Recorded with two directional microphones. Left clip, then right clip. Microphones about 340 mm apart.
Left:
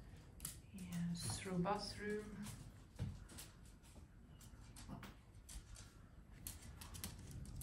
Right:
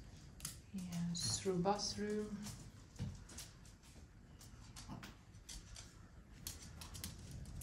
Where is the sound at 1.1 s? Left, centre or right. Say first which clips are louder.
Right 9 dB; centre.